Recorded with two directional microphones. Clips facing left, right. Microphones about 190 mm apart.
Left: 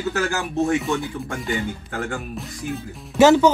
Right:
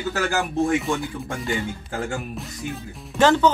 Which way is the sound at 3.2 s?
10° left (ahead or behind).